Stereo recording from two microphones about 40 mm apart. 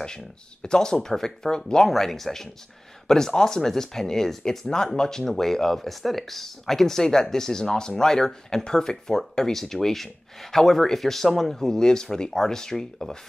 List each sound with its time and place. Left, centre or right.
0.0 s speech: centre